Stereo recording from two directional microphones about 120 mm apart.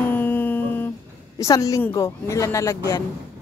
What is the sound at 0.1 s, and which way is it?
Music, 15° left (ahead or behind).